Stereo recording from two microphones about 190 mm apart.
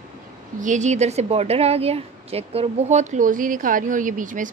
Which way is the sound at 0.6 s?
40° right (ahead or behind).